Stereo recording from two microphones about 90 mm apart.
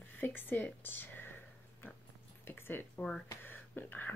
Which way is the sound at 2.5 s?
25° left (ahead or behind).